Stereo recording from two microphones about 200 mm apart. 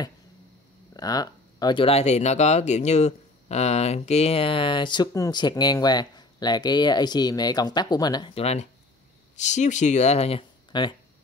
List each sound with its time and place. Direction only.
0.9 s speech: 20° left (ahead or behind)